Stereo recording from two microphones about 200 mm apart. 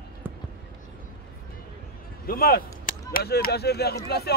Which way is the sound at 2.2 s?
45° left (ahead or behind).